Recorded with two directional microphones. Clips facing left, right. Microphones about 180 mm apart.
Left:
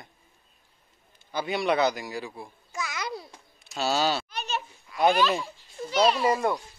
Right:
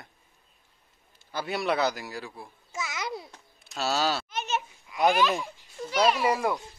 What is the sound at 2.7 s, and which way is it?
Babbling, 20° right (ahead or behind).